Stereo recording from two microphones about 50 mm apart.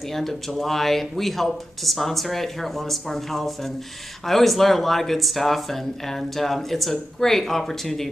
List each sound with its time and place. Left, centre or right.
0.1 s speech: centre